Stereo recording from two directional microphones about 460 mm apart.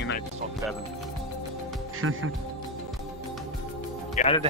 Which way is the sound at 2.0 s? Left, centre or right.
Right.